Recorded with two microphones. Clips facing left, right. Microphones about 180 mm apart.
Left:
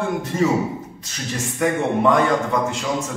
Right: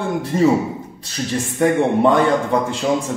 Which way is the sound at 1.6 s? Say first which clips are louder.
Right 4 dB; 30° right (ahead or behind).